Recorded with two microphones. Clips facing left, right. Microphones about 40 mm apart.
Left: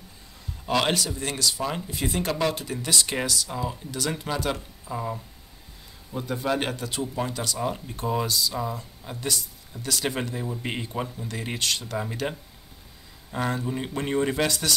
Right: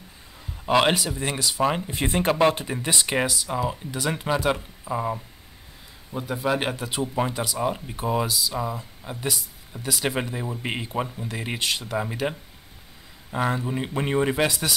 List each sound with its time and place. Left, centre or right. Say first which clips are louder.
0.7 s speech: right 4 dB; right